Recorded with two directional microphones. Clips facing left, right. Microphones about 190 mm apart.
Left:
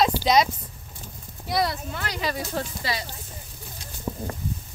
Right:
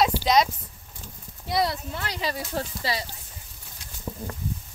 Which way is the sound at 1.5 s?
25° right (ahead or behind).